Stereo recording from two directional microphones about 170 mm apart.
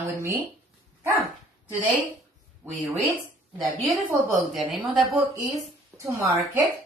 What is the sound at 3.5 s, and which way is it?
A woman's voice, centre (ahead or behind).